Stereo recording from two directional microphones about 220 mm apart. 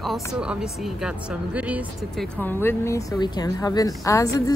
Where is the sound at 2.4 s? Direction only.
10° left (ahead or behind).